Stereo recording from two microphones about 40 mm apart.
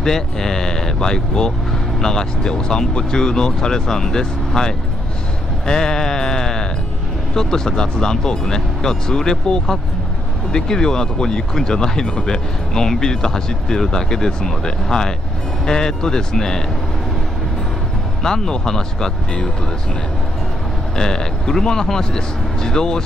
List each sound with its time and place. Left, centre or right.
0.0 s speech: centre
5.7 s sheep: centre
7.3 s speech: centre
18.2 s speech: centre
20.9 s speech: centre